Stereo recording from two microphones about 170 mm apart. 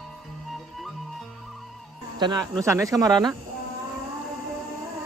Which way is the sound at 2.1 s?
25° right (ahead or behind).